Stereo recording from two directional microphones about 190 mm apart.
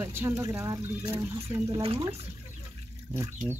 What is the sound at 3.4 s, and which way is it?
Speech, 15° right (ahead or behind).